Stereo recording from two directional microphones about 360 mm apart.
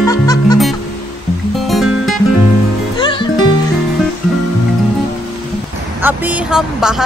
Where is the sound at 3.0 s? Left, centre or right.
Centre.